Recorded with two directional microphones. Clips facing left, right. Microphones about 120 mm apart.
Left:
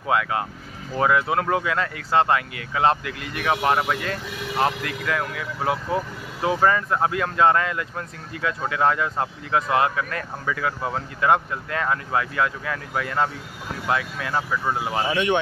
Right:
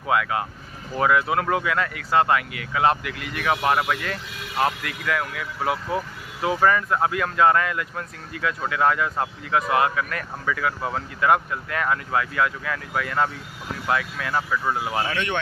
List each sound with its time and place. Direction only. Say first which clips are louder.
0.0 s speech: even; 25° left (ahead or behind)